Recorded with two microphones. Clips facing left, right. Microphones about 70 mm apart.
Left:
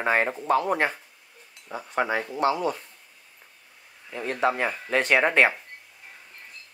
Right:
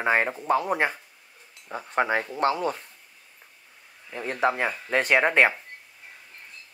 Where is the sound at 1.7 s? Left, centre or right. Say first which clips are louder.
Right 1 dB; right.